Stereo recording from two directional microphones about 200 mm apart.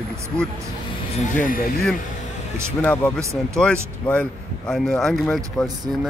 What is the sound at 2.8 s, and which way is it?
Speech, 5° left (ahead or behind).